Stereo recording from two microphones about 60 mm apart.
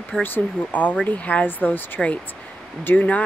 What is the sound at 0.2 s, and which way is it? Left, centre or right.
Speech, left.